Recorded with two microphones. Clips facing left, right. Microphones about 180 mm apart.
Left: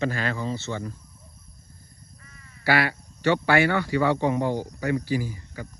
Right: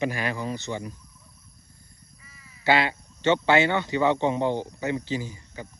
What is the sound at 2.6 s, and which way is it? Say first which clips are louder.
Speech: right 1 dB; 20° right (ahead or behind).